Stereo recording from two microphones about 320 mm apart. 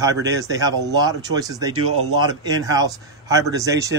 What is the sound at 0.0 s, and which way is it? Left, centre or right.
Speech, centre.